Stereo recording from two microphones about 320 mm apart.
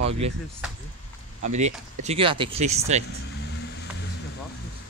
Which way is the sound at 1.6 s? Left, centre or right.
Centre.